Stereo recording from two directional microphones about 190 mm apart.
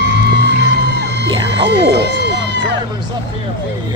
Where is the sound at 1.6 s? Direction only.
65° right (ahead or behind).